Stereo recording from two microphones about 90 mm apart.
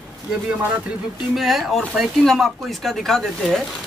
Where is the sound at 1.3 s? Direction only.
Centre (ahead or behind).